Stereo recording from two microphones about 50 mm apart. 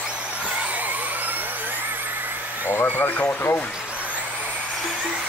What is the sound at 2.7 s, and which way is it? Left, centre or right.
Speech, left.